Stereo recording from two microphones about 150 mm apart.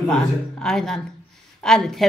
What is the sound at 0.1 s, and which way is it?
Speech, 5° left (ahead or behind).